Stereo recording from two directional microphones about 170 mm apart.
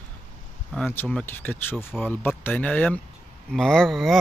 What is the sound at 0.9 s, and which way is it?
A man's voice, 10° left (ahead or behind).